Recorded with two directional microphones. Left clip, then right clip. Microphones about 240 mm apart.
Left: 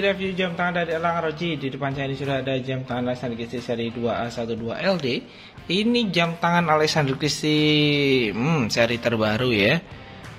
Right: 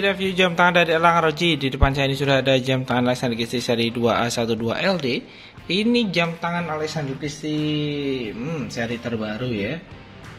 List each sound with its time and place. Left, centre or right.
0.0 s a man's voice: centre
6.4 s speech: centre
6.8 s speech: left